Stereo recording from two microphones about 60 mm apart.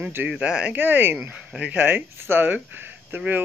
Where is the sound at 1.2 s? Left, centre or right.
Centre.